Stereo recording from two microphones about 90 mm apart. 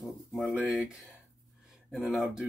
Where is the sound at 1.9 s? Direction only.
Centre (ahead or behind).